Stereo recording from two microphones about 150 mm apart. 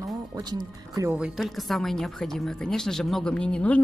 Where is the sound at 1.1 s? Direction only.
Centre (ahead or behind).